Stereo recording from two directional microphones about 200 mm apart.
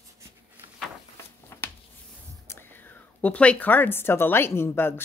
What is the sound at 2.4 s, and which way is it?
Speech, 10° left (ahead or behind).